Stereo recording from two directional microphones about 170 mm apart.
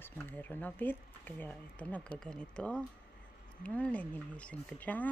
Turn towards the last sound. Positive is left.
turn(degrees=10)  # may be behind; listen again after turning